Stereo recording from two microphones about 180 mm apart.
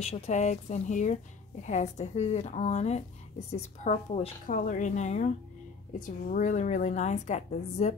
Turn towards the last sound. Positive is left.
turn(degrees=40)  # may be behind; listen again after turning